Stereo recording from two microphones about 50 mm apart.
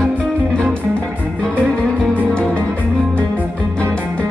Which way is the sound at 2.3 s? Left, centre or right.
Left.